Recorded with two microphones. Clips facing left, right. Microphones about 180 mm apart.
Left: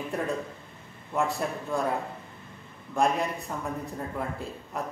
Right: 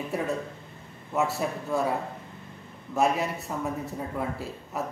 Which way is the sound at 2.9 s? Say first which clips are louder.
Right 1 dB; 5° right (ahead or behind).